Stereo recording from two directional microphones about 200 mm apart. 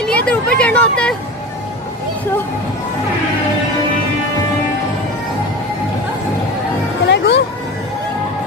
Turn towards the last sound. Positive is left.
turn(degrees=60)  # may be behind; listen again after turning